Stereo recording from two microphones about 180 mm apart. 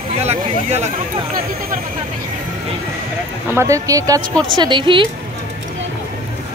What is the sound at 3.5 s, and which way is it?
A woman's voice, 15° right (ahead or behind).